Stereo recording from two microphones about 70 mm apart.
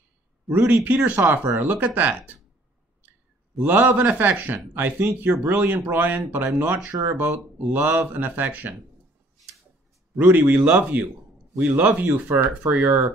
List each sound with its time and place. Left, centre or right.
0.5 s a man's voice: right
3.5 s a man's voice: right
10.1 s a man's voice: right